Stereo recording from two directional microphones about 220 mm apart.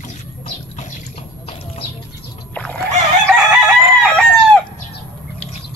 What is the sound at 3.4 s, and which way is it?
Chicken, centre (ahead or behind).